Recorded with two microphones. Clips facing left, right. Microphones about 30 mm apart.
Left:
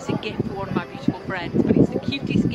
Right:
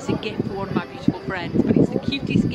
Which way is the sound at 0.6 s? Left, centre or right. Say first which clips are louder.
Right 2 dB; centre.